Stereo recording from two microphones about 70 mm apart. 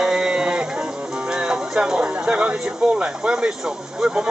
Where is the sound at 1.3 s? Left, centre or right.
Centre.